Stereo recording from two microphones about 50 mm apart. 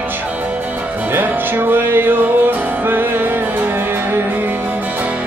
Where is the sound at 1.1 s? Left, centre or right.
Right.